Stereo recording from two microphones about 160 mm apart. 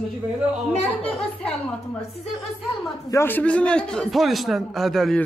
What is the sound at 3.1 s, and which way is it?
Speech, 10° left (ahead or behind).